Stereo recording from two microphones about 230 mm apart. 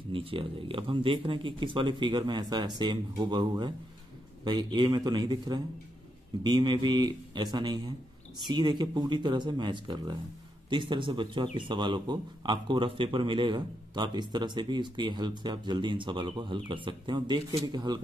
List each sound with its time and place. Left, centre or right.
0.1 s speech: right